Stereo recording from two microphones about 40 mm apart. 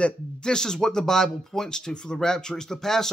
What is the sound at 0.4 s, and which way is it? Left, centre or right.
Speech, centre.